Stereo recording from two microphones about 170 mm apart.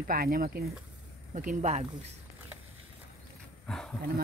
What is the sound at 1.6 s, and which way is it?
Speech, 40° right (ahead or behind).